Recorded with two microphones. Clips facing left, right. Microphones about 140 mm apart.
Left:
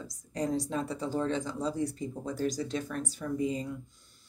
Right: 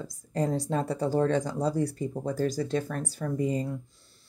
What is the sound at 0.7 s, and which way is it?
Speech, 60° right (ahead or behind).